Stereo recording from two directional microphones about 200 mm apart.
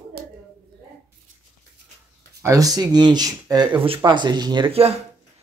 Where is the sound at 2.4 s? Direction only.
15° right (ahead or behind).